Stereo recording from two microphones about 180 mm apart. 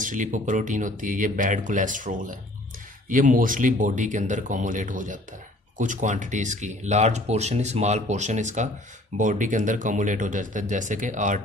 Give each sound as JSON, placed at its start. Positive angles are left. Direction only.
{"t": 0.0, "sound": "speech", "side_deg": -45}